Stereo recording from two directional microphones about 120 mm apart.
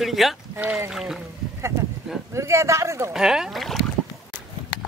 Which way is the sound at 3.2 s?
5° right (ahead or behind).